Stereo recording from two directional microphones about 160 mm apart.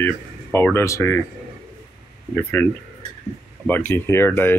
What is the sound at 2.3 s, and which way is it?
Speech, 15° left (ahead or behind).